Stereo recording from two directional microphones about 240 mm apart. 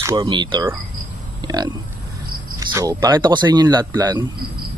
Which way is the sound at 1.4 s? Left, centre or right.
Centre.